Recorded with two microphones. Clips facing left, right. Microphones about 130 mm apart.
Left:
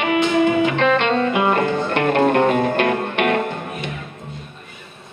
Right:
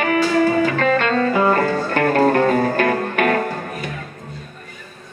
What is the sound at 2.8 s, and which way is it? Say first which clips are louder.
Music: right 1 dB; 40° right (ahead or behind).